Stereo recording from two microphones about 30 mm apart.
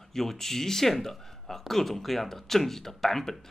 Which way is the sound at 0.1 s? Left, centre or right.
Centre.